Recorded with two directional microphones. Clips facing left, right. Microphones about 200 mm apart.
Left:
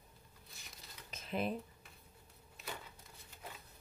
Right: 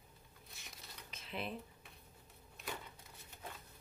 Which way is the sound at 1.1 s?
45° left (ahead or behind).